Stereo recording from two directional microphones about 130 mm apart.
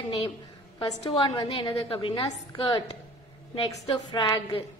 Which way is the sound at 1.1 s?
40° left (ahead or behind).